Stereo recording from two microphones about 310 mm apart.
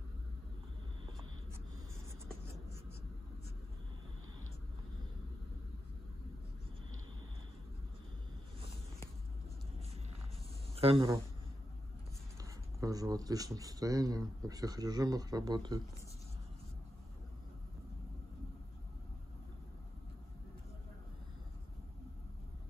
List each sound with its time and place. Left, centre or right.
10.8 s speech: centre
12.4 s speech: centre